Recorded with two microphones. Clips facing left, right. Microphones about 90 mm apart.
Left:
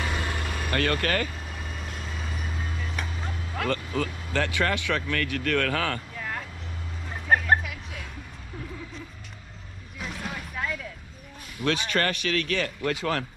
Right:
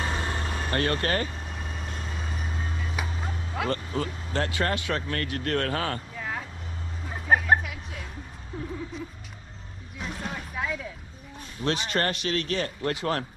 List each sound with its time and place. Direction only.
0.0 s vehicle: 25° right (ahead or behind)
1.5 s vehicle: centre (ahead or behind)
3.7 s speech: 25° right (ahead or behind)
6.1 s vehicle: 5° right (ahead or behind)
9.9 s vehicle: centre (ahead or behind)
11.6 s speech: 25° right (ahead or behind)